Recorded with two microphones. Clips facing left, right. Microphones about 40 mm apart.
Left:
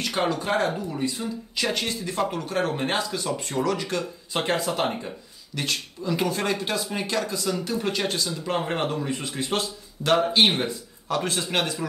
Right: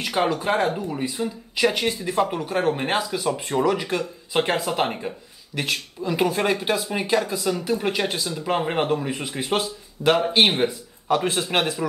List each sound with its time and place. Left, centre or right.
0.0 s speech: centre